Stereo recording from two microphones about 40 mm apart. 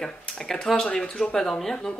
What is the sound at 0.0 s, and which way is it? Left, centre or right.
Speech, centre.